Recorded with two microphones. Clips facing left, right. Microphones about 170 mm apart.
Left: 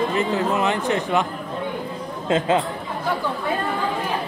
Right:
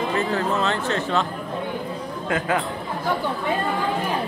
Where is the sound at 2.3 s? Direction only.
25° left (ahead or behind).